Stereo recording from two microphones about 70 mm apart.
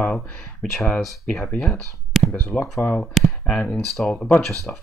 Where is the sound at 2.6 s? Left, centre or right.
Left.